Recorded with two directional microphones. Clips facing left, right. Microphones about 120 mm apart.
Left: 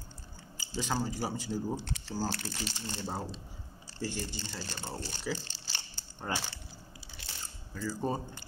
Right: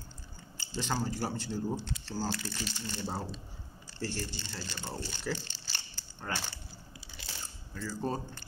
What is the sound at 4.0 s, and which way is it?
Speech, 10° left (ahead or behind).